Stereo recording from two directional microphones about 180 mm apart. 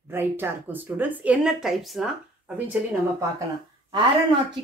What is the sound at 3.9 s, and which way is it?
Speech, 25° right (ahead or behind).